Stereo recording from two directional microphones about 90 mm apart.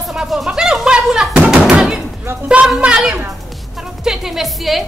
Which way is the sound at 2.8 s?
10° right (ahead or behind).